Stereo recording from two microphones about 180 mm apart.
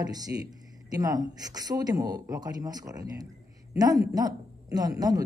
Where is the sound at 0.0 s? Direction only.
20° right (ahead or behind).